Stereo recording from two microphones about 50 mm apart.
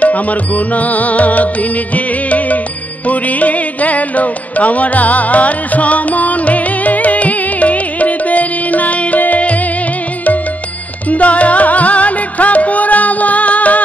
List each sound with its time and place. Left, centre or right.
0.0 s music: left
11.1 s music: left